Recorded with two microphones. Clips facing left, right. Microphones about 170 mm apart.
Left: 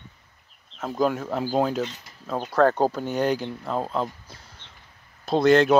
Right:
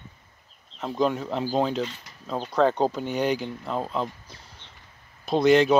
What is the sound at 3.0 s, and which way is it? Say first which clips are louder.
Speech: left 1 dB; 45° left (ahead or behind).